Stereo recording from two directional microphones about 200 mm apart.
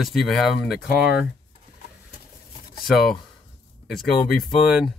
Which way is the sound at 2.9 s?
Centre (ahead or behind).